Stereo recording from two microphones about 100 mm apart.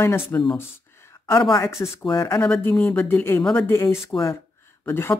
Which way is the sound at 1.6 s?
30° left (ahead or behind).